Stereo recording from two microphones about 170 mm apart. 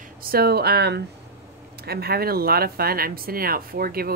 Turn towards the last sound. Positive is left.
turn(degrees=-60)  # may be behind; listen again after turning